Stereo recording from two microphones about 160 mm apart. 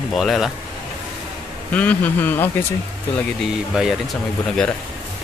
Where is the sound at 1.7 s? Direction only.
10° left (ahead or behind).